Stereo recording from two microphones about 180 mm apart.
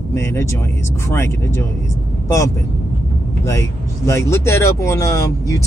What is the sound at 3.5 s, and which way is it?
Speech, 15° left (ahead or behind).